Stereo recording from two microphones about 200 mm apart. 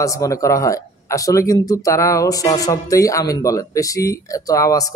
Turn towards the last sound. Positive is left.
turn(degrees=15)  # may be behind; listen again after turning